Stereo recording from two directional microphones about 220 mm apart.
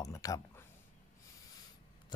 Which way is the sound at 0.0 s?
15° left (ahead or behind).